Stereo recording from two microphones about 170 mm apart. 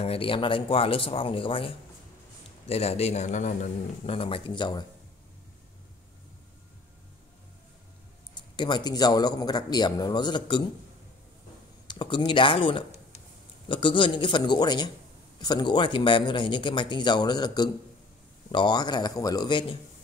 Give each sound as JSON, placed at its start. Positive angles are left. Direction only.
{"t": 0.0, "sound": "a man's voice", "side_deg": 35}
{"t": 2.7, "sound": "a man's voice", "side_deg": 40}
{"t": 8.5, "sound": "speech", "side_deg": 25}
{"t": 11.9, "sound": "speech", "side_deg": 30}